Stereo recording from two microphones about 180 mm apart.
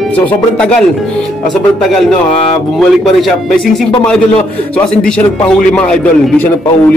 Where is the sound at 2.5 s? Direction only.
Centre (ahead or behind).